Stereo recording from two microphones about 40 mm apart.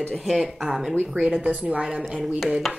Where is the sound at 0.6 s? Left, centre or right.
Centre.